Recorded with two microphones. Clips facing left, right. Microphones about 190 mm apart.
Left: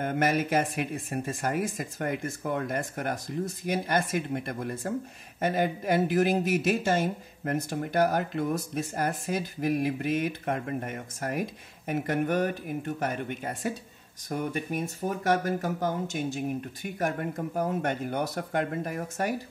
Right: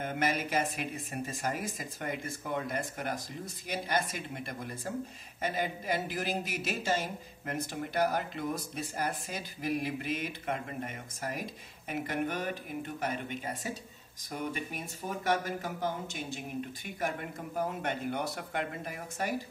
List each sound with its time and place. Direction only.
0.0 s speech: 50° left (ahead or behind)